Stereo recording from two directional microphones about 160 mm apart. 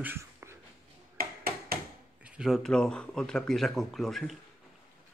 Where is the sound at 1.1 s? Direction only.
65° right (ahead or behind).